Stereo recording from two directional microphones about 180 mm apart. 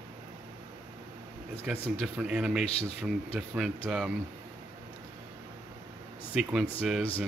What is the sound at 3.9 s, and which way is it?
Speech, 5° right (ahead or behind).